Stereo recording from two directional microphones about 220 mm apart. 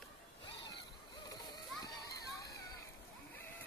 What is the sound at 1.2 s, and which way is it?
Children playing, 15° left (ahead or behind).